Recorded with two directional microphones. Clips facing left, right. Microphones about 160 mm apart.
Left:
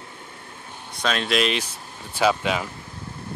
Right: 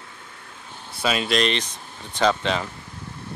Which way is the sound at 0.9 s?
5° right (ahead or behind).